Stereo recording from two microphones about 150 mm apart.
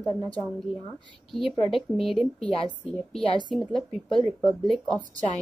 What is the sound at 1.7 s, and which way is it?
A woman's voice, centre (ahead or behind).